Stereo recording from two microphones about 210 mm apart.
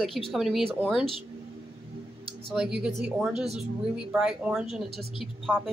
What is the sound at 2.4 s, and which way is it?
Speech, centre (ahead or behind).